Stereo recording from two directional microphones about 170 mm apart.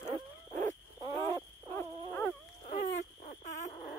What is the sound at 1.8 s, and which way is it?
Dog, 15° left (ahead or behind).